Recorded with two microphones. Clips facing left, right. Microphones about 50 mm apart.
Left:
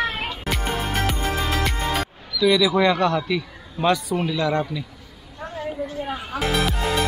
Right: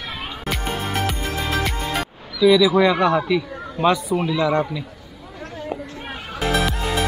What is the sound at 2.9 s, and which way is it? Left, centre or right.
Speech, right.